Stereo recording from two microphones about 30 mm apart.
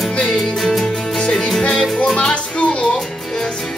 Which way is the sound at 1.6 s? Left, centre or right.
Left.